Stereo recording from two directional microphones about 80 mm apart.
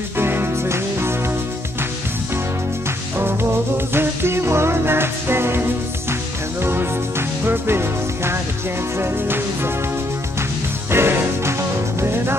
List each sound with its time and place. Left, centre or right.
0.2 s music: right
3.2 s music: right
10.9 s music: right